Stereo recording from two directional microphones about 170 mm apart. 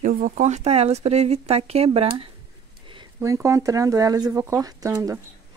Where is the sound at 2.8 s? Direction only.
30° right (ahead or behind).